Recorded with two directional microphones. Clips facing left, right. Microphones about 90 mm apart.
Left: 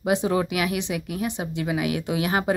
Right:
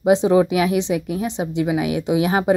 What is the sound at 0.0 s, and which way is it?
Speech, 25° right (ahead or behind).